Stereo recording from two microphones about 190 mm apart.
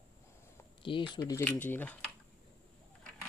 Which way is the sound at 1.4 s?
10° left (ahead or behind).